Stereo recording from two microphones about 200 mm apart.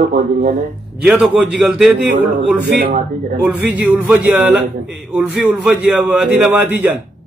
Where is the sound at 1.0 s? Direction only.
Centre (ahead or behind).